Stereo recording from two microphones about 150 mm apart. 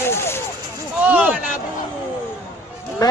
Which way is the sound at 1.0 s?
10° right (ahead or behind).